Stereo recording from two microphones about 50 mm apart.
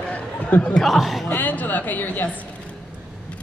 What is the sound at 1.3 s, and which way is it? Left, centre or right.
Speech, left.